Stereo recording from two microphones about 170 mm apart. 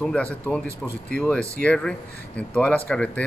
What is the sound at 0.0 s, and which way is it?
Speech, 5° left (ahead or behind).